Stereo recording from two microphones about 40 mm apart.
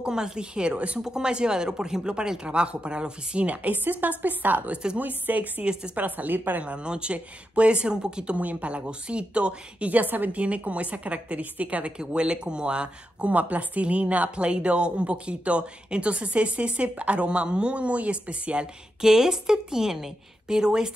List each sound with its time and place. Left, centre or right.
0.0 s speech: centre
1.0 s a woman's voice: centre; by 6.6 s right
6.6 s speech: right
8.4 s a woman's voice: right
10.3 s a woman's voice: right
12.2 s speech: right
13.3 s a woman's voice: right
18.9 s a woman's voice: centre